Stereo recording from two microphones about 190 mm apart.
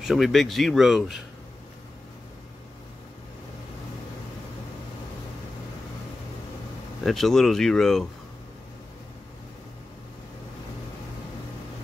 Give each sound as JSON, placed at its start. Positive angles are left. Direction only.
{"t": 0.0, "sound": "speech", "side_deg": 0}
{"t": 7.0, "sound": "speech", "side_deg": 0}